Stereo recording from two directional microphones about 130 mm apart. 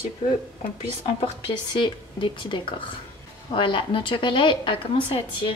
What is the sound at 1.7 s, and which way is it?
A woman's voice, 40° left (ahead or behind).